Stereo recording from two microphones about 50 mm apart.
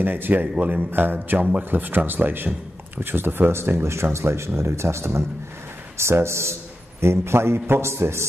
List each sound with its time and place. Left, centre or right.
0.0 s speech: right
0.9 s speech: right